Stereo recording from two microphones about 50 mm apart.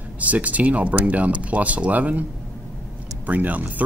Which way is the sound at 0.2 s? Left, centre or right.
Right.